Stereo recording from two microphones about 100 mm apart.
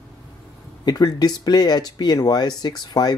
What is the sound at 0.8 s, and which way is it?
Speech, 40° left (ahead or behind).